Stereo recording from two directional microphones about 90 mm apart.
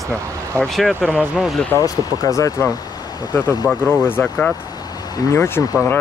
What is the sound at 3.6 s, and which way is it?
Speech, 10° right (ahead or behind).